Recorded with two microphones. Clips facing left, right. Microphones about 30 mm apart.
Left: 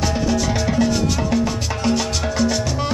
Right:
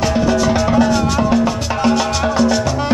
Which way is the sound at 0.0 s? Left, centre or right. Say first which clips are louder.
Right 5 dB; centre.